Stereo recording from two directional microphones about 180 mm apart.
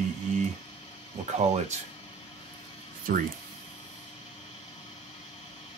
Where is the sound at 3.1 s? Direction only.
55° right (ahead or behind).